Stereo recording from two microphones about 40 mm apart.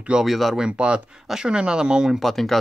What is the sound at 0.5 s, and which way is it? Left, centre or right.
Speech, right.